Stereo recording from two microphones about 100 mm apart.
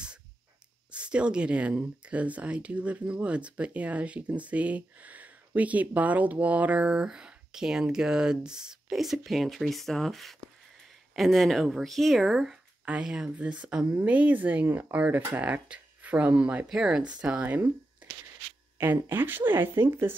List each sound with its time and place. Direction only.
0.9 s speech: 10° right (ahead or behind)
18.8 s speech: 20° right (ahead or behind)